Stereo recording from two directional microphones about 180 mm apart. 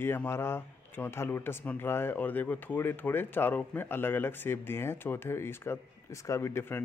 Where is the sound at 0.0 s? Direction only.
10° left (ahead or behind).